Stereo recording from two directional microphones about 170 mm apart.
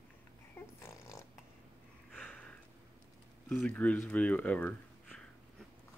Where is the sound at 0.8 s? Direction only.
15° left (ahead or behind).